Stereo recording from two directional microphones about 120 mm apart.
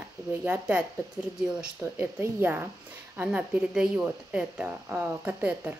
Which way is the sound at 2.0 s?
20° right (ahead or behind).